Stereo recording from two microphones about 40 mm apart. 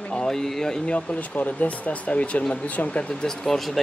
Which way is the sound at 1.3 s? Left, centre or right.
Left.